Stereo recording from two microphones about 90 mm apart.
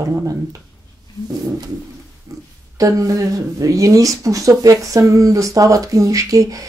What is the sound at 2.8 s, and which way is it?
Speech, 40° right (ahead or behind).